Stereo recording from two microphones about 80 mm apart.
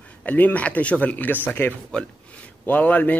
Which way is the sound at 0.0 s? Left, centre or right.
Centre.